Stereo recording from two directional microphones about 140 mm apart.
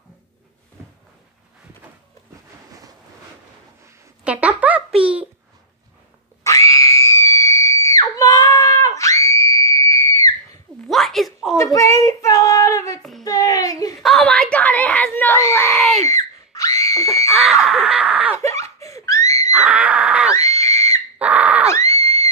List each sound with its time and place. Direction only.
4.2 s a sound: 10° right (ahead or behind)
5.0 s babbling: 10° right (ahead or behind)
6.4 s screaming: 20° left (ahead or behind)
10.9 s a sound: centre (ahead or behind)
11.5 s a sound: 20° left (ahead or behind)
14.0 s screaming: 5° left (ahead or behind); by 15.7 s 20° left (ahead or behind)
15.7 s baby cry: centre (ahead or behind)
16.1 s screaming: 25° left (ahead or behind)
17.3 s screaming: centre (ahead or behind)
18.4 s laughter: 20° left (ahead or behind)
19.5 s wild animals: 10° right (ahead or behind)
20.3 s screaming: 20° left (ahead or behind)
21.2 s a sound: 10° right (ahead or behind)
21.7 s screaming: 20° left (ahead or behind)